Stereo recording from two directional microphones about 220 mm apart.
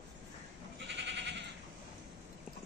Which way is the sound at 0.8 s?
50° right (ahead or behind).